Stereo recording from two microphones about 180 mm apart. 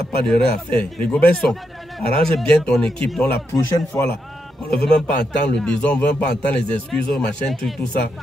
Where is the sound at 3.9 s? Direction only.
10° left (ahead or behind).